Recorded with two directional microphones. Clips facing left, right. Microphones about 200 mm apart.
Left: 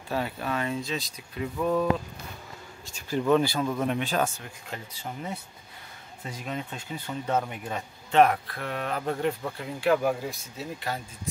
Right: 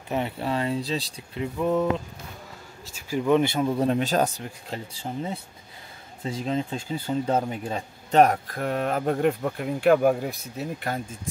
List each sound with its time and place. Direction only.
0.1 s speech: 25° right (ahead or behind)
2.8 s speech: 5° right (ahead or behind); by 11.0 s 55° right (ahead or behind)